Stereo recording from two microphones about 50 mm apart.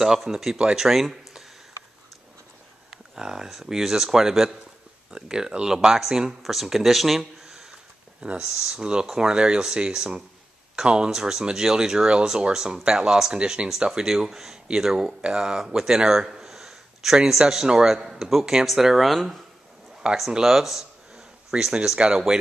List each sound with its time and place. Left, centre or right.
0.0 s speech: centre
0.6 s speech: centre
2.9 s speech: centre
20.0 s speech: centre
20.4 s a sound: centre
22.1 s speech: centre